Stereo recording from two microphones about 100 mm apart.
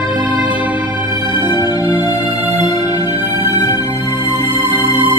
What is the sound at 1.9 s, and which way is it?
Music, 40° left (ahead or behind).